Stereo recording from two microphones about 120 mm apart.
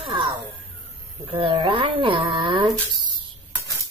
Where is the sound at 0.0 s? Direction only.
45° right (ahead or behind).